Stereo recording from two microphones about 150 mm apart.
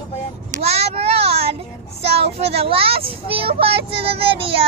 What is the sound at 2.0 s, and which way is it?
Speech, 40° right (ahead or behind).